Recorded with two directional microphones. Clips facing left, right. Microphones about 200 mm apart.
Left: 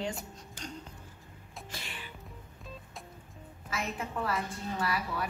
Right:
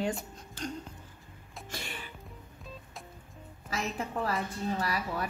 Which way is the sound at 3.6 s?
35° right (ahead or behind).